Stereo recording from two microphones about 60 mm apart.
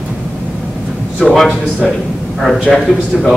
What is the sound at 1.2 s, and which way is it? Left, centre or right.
Speech, centre.